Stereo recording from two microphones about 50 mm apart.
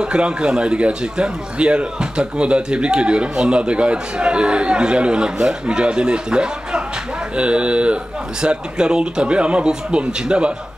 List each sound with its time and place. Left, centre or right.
0.0 s a man's voice: centre